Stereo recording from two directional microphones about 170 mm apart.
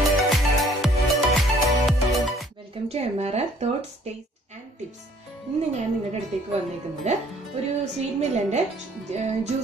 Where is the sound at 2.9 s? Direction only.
40° right (ahead or behind).